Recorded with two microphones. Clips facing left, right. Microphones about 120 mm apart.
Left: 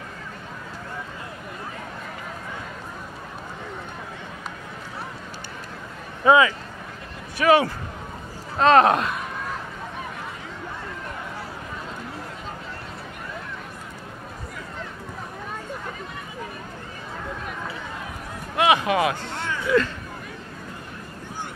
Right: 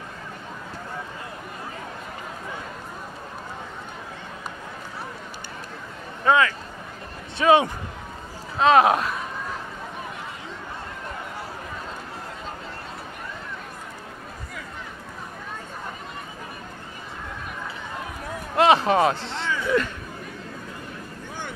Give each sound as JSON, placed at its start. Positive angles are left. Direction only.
{"t": 6.2, "sound": "speech", "side_deg": 10}
{"t": 7.3, "sound": "speech", "side_deg": -20}
{"t": 8.5, "sound": "speech", "side_deg": -5}
{"t": 18.7, "sound": "a sound", "side_deg": -30}
{"t": 19.2, "sound": "music", "side_deg": -20}